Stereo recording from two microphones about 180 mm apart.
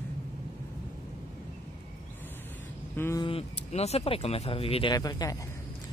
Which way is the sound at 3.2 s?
30° left (ahead or behind).